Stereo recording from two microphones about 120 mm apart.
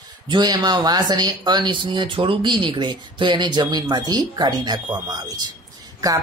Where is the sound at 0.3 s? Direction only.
35° right (ahead or behind).